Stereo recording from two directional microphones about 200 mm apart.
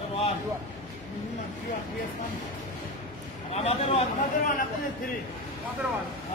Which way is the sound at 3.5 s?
30° left (ahead or behind).